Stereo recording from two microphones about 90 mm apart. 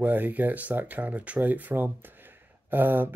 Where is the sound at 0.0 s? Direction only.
20° right (ahead or behind).